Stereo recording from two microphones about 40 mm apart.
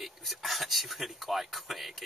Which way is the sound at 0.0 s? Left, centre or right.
Centre.